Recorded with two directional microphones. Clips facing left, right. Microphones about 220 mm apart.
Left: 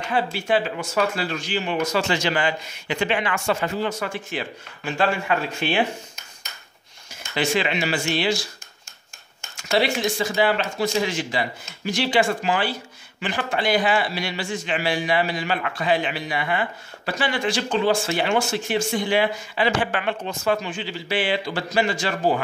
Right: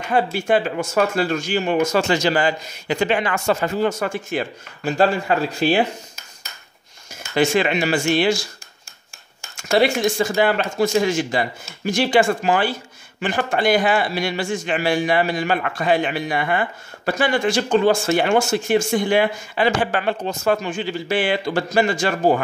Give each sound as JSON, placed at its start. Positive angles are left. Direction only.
{"t": 0.1, "sound": "a man's voice", "side_deg": -45}
{"t": 7.3, "sound": "a man's voice", "side_deg": -45}
{"t": 9.6, "sound": "a man's voice", "side_deg": -50}